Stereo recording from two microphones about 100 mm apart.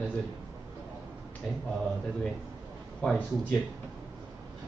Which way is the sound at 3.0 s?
10° left (ahead or behind).